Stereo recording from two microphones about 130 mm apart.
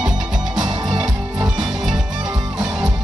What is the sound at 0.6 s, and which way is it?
Music, 35° right (ahead or behind).